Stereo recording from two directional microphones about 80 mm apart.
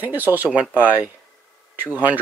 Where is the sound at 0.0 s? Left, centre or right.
Right.